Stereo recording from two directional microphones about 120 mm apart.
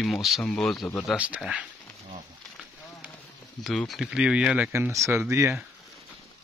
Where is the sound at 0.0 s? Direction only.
Centre (ahead or behind).